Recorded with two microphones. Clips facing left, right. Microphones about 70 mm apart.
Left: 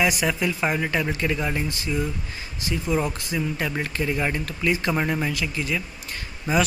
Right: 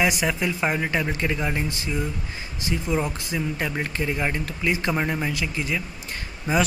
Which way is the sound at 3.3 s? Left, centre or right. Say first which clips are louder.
Even; centre.